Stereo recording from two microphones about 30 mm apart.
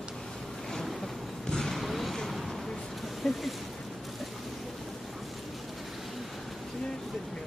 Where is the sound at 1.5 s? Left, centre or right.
Centre.